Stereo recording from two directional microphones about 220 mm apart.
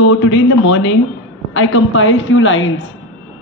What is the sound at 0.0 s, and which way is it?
A man's voice, 65° left (ahead or behind).